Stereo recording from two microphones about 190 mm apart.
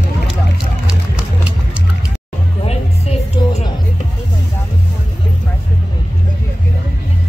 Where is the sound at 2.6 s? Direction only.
35° left (ahead or behind).